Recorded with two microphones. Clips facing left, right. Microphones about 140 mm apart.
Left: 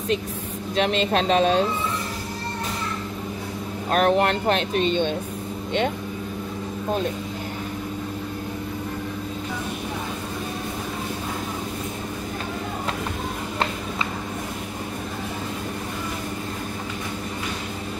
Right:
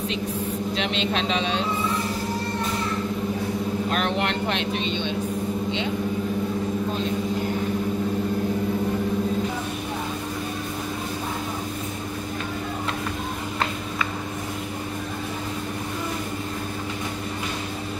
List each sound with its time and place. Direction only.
0.7 s speech: 45° left (ahead or behind)
3.9 s speech: 45° left (ahead or behind)